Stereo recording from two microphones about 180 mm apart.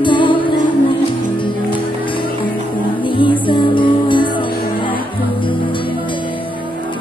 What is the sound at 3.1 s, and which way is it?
Music, 30° left (ahead or behind).